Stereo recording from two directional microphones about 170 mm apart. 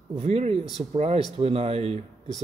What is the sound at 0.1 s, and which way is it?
Speech, 40° right (ahead or behind).